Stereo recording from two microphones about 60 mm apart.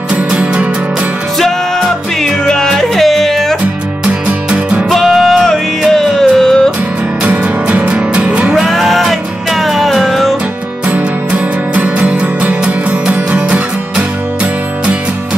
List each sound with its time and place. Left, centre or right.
0.1 s music: right
2.4 s music: centre
4.3 s music: centre
4.8 s music: centre
7.2 s music: right
8.5 s music: centre
10.9 s music: right